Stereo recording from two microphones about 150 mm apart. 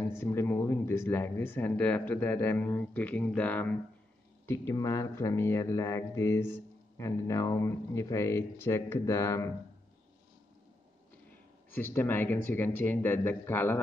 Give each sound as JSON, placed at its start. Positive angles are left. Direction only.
{"t": 0.2, "sound": "speech", "side_deg": 15}
{"t": 4.5, "sound": "speech", "side_deg": 20}
{"t": 11.7, "sound": "speech", "side_deg": 15}